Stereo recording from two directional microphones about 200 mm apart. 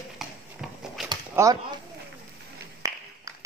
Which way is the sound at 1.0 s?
15° right (ahead or behind).